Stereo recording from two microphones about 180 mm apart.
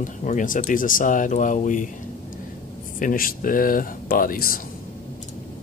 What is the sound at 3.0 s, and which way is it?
Speech, 50° left (ahead or behind).